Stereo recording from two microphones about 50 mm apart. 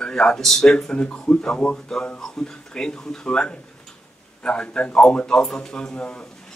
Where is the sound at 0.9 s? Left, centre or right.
Left.